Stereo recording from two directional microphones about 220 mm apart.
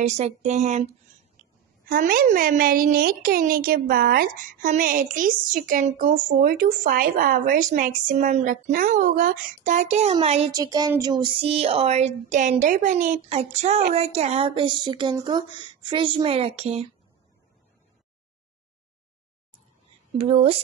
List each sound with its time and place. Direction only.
0.0 s a woman's voice: 30° right (ahead or behind)
10.5 s speech: 15° right (ahead or behind)
20.2 s speech: 25° right (ahead or behind)